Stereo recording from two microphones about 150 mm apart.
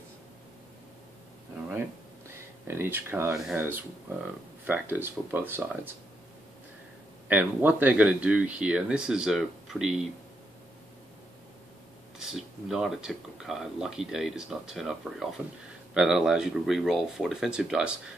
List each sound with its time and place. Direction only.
2.7 s speech: 15° right (ahead or behind)
7.2 s speech: 10° right (ahead or behind)
12.2 s speech: 5° right (ahead or behind)